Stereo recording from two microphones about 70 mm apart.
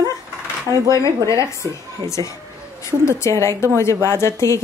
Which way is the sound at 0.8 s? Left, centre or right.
Left.